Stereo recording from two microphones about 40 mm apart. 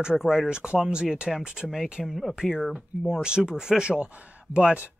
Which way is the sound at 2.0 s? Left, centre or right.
Centre.